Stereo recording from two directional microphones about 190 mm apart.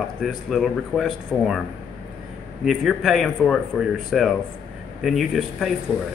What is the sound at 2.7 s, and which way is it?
Speech, centre (ahead or behind).